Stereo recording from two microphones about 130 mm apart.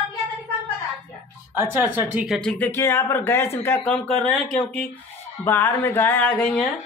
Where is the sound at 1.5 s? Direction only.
15° right (ahead or behind).